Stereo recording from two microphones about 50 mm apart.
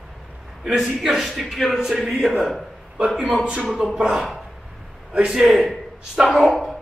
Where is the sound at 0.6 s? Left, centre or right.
Centre.